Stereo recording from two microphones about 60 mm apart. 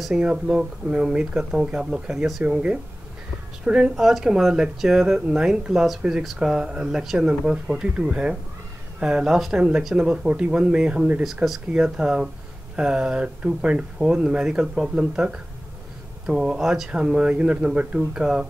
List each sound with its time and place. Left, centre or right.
0.1 s speech: centre
3.9 s speech: centre